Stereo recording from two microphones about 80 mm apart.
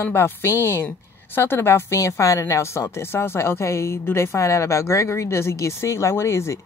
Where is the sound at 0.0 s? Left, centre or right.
Left.